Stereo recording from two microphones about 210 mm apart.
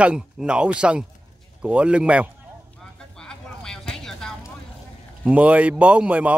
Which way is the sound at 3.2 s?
5° left (ahead or behind).